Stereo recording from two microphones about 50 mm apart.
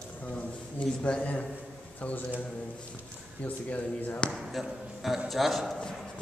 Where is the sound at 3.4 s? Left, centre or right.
Left.